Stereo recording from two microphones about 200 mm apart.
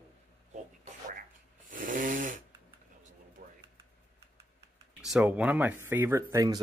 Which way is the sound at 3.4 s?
50° right (ahead or behind).